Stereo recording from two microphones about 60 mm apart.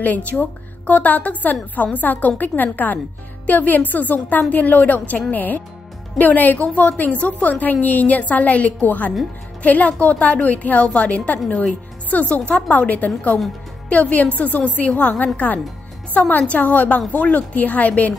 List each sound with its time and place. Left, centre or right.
0.0 s a woman's voice: left